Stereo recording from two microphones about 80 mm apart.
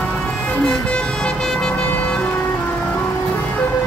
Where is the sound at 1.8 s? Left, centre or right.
Left.